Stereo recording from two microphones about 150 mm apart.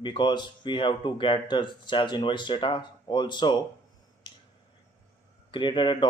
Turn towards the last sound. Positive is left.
turn(degrees=30)  # may be behind; listen again after turning